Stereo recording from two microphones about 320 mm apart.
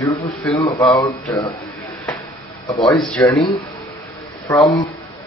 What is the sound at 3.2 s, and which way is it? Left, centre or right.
Speech, centre.